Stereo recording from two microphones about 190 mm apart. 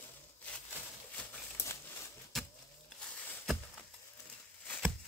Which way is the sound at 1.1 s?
10° left (ahead or behind).